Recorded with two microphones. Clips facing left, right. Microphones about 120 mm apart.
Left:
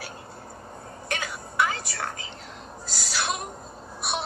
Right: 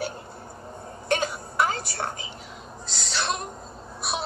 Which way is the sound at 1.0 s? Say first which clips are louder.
Right 8 dB; 30° right (ahead or behind).